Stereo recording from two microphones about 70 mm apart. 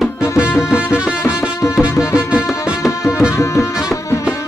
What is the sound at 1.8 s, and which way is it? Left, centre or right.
Music, left.